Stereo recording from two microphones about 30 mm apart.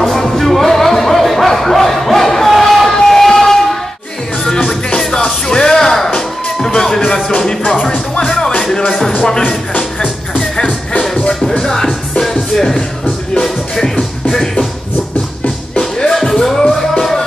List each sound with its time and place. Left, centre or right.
0.0 s music: centre
2.9 s a sound: centre
4.5 s music: left
9.1 s music: left
10.0 s music: centre
10.9 s music: left
11.6 s music: centre
15.8 s music: centre